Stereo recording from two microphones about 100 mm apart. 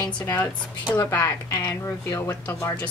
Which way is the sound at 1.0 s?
25° left (ahead or behind).